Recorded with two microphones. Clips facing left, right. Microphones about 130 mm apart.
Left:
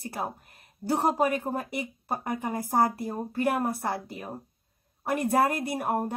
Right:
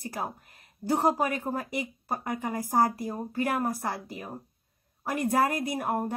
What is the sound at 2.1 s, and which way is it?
Speech, 30° left (ahead or behind).